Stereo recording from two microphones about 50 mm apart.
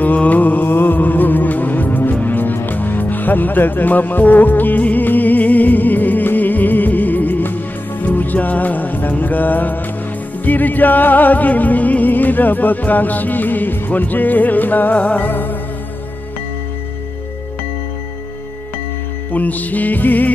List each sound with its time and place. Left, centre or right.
0.0 s mantra: left
0.7 s music: left
19.3 s music: left